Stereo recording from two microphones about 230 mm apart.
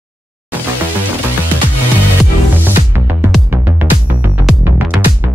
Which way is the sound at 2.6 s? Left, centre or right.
Centre.